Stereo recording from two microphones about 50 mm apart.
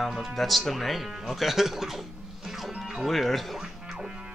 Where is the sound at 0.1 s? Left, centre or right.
Centre.